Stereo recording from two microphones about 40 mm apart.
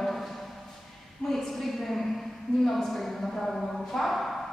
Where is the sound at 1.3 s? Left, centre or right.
Centre.